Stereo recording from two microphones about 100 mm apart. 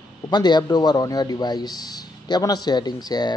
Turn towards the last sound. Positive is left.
turn(degrees=45)  # may be behind; listen again after turning